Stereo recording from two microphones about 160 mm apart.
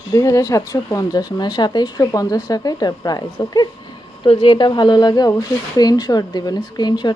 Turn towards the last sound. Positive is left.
turn(degrees=25)  # may be behind; listen again after turning